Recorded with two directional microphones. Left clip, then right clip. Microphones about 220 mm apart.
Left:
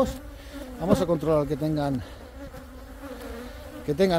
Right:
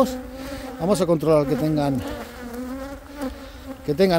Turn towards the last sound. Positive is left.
turn(degrees=-20)  # may be behind; listen again after turning